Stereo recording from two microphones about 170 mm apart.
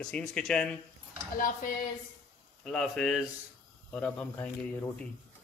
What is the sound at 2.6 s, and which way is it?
Speech, 5° left (ahead or behind).